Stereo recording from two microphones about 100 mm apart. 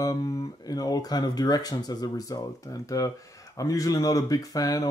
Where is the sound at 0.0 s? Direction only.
40° left (ahead or behind).